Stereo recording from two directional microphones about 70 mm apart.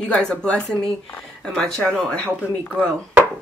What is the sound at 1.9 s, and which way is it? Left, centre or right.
Speech, centre.